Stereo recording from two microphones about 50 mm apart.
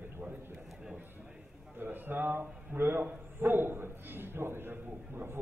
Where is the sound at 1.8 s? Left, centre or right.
Right.